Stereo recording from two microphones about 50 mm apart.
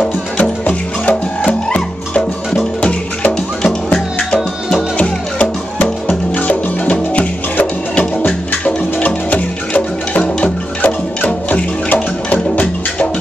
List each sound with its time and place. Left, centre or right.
0.4 s music: left
3.6 s music: centre
4.9 s music: left